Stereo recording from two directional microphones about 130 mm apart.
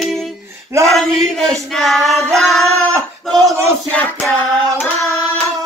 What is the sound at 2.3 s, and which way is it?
Singing, centre (ahead or behind).